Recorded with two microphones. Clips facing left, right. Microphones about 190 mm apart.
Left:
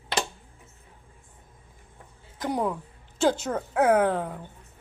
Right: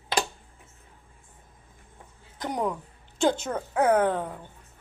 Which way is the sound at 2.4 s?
5° left (ahead or behind).